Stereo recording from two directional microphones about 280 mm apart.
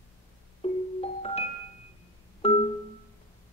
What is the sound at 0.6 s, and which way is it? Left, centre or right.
Music, left.